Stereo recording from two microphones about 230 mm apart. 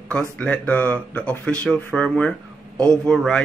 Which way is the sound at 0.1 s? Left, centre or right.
Centre.